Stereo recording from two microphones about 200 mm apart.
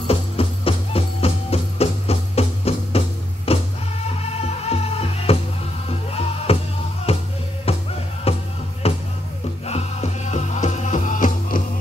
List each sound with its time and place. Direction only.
0.0 s music: 30° left (ahead or behind)